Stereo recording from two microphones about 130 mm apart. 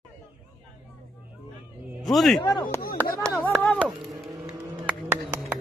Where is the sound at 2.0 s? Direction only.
Centre (ahead or behind).